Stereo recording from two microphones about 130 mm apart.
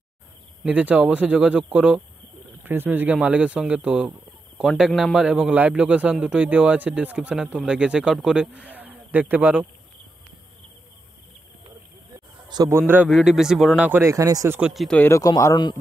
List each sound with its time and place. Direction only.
0.7 s a man's voice: 10° right (ahead or behind)
12.6 s a man's voice: 15° right (ahead or behind)
13.1 s speech: 5° right (ahead or behind)
13.8 s speech: 20° right (ahead or behind)
14.6 s speech: centre (ahead or behind)
15.0 s speech: 20° left (ahead or behind)